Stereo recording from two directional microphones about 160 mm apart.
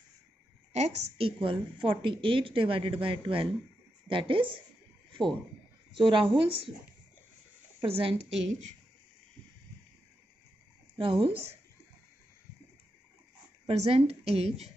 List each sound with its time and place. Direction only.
0.7 s a woman's voice: 45° right (ahead or behind)
1.1 s a woman's voice: 35° right (ahead or behind)
5.9 s a woman's voice: 35° right (ahead or behind)
7.8 s a woman's voice: 35° right (ahead or behind)
8.5 s a woman's voice: 45° right (ahead or behind)
11.0 s a woman's voice: 35° right (ahead or behind)
13.7 s a woman's voice: 40° right (ahead or behind)